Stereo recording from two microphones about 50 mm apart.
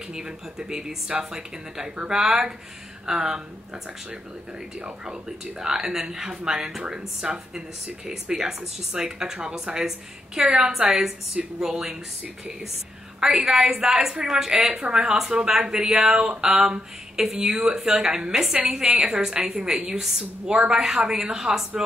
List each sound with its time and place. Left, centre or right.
0.1 s a woman's voice: centre
13.2 s a woman's voice: centre; by 16.8 s right
17.2 s a woman's voice: centre